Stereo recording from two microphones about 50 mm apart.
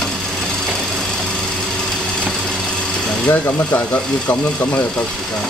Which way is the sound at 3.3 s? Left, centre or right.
Left.